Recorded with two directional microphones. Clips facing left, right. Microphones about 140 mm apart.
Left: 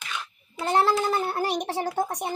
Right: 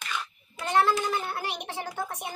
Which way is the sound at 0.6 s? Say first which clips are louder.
Left 2 dB; 40° left (ahead or behind).